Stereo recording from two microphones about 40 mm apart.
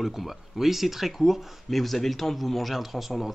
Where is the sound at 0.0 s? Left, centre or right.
Centre.